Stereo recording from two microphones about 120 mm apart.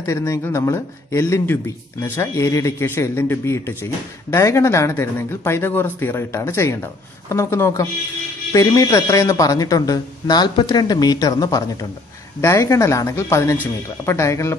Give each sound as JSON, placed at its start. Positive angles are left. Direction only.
{"t": 0.0, "sound": "speech", "side_deg": 25}